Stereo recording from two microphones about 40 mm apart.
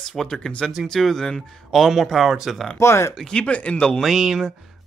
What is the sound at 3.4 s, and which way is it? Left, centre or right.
Speech, left.